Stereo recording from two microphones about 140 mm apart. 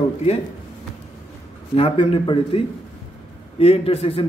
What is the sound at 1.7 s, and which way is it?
Speech, 45° left (ahead or behind).